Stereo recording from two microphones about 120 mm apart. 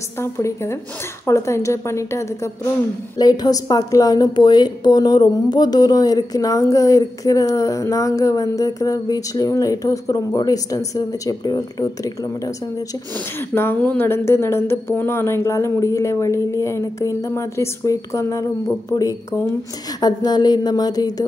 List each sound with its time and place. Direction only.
0.2 s a woman's voice: 20° left (ahead or behind)
13.1 s a woman's voice: 20° left (ahead or behind)